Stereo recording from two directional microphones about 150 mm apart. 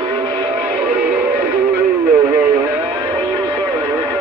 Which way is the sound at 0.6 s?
10° right (ahead or behind).